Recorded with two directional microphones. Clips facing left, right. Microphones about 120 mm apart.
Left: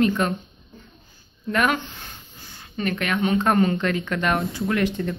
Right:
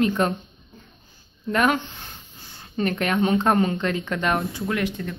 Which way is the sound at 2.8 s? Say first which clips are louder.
Right 2 dB; 35° right (ahead or behind).